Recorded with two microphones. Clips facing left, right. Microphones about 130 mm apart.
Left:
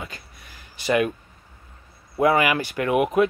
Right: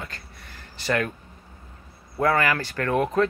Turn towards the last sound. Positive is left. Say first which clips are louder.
# left 3 dB
turn(degrees=15)  # may be behind; listen again after turning